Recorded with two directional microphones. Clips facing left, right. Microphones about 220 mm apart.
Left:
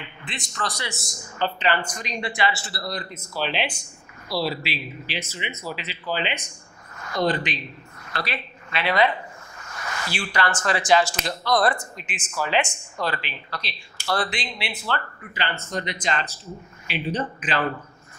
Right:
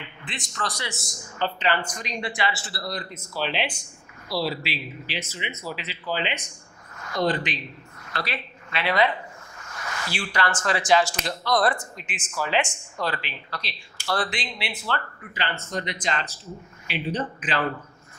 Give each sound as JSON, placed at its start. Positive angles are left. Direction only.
{"t": 0.0, "sound": "speech", "side_deg": 15}